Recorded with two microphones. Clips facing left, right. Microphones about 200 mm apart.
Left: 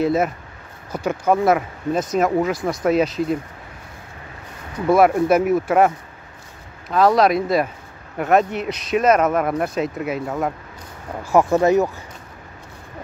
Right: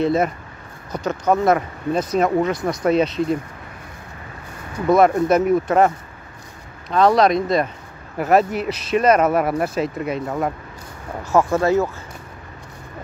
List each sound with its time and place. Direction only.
0.0 s speech: 5° left (ahead or behind)
4.8 s speech: 5° left (ahead or behind)
11.2 s speech: 15° left (ahead or behind)